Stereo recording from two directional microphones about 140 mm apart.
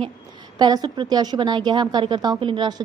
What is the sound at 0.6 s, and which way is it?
A woman's voice, 30° right (ahead or behind).